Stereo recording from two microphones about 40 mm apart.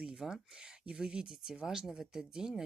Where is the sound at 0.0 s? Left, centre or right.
Centre.